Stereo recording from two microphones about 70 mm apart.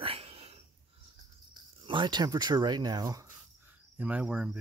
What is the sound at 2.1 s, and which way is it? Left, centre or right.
Speech, right.